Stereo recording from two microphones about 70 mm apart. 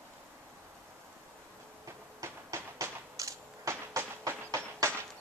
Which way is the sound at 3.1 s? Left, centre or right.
Right.